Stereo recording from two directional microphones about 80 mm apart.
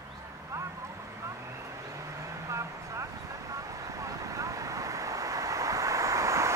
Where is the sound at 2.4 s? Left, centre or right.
Right.